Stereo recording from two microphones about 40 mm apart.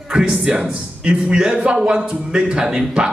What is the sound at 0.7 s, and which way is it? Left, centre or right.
A man's voice, right.